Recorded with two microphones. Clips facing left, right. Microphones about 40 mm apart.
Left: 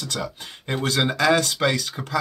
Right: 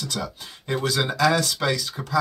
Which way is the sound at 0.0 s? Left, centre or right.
Left.